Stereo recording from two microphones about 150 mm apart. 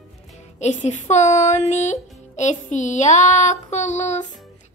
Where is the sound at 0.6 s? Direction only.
55° left (ahead or behind).